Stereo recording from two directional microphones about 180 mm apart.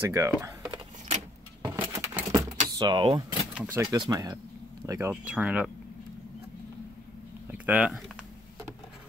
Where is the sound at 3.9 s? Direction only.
20° right (ahead or behind).